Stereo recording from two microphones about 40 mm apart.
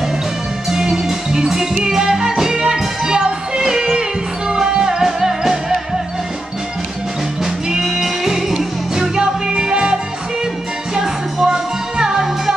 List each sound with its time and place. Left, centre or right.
0.7 s music: centre
7.7 s music: centre
11.0 s music: centre